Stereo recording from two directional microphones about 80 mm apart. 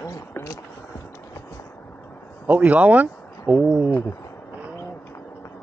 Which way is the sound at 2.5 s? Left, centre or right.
Centre.